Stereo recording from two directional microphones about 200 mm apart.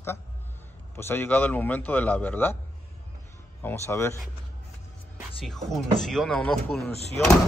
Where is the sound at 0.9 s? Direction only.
10° left (ahead or behind).